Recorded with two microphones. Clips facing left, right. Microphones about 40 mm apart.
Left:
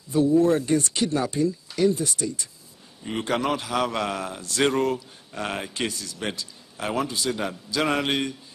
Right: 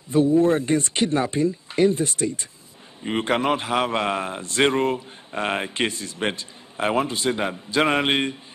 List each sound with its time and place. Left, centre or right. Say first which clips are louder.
0.1 s speech: right 2 dB; right